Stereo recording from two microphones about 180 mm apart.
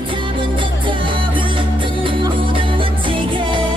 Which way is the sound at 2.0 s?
30° right (ahead or behind).